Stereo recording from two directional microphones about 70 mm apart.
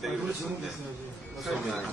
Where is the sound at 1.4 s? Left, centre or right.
Centre.